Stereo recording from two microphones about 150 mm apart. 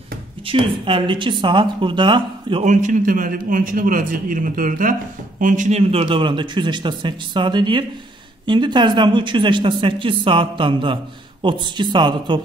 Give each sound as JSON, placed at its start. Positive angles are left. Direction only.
{"t": 0.5, "sound": "speech", "side_deg": -35}
{"t": 2.6, "sound": "a man's voice", "side_deg": -55}